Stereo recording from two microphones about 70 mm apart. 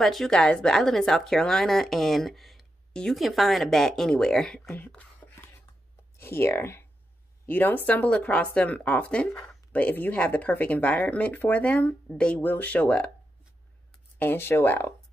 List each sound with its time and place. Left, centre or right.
0.0 s a woman's voice: centre
2.9 s speech: centre
3.2 s speech: centre
4.7 s speech: left
6.1 s speech: left
7.4 s speech: left
12.4 s speech: left
14.1 s speech: left